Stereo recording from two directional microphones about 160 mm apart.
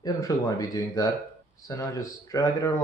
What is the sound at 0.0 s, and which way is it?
Speech, 20° left (ahead or behind).